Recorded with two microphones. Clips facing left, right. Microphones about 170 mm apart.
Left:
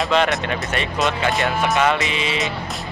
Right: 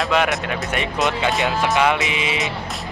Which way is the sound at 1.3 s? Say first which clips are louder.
Even; centre (ahead or behind).